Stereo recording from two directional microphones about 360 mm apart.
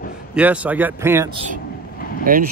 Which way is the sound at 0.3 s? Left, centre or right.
Centre.